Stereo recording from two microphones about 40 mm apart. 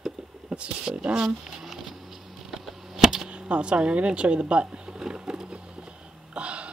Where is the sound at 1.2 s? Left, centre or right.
Centre.